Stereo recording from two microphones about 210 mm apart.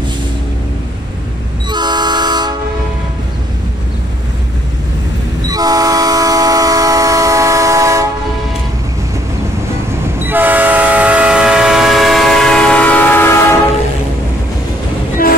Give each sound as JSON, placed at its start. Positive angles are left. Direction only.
{"t": 1.7, "sound": "train", "side_deg": -20}
{"t": 5.5, "sound": "train", "side_deg": -15}
{"t": 10.2, "sound": "train", "side_deg": -10}